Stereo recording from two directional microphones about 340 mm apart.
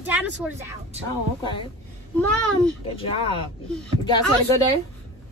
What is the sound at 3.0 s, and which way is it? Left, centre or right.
Speech, centre.